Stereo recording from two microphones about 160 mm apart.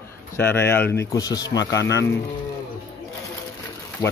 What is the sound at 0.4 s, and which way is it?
Speech, 15° left (ahead or behind).